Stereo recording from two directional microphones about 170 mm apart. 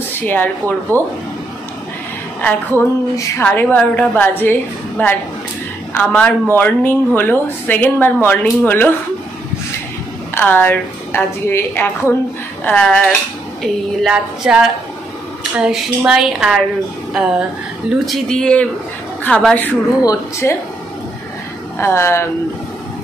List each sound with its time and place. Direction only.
0.2 s a woman's voice: 10° left (ahead or behind)
2.4 s a woman's voice: 15° left (ahead or behind)
10.3 s a woman's voice: 10° left (ahead or behind)
20.0 s speech: 20° left (ahead or behind)
21.7 s a woman's voice: 15° left (ahead or behind)